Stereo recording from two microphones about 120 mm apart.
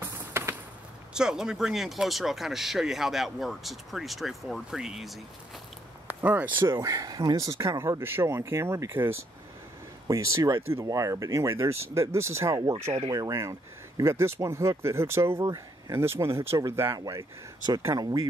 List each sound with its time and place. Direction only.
0.0 s a sound: 20° right (ahead or behind)
1.1 s speech: 5° right (ahead or behind)
6.0 s speech: 15° right (ahead or behind)
6.6 s speech: 35° right (ahead or behind)
15.4 s speech: 35° right (ahead or behind)
16.0 s speech: 20° right (ahead or behind)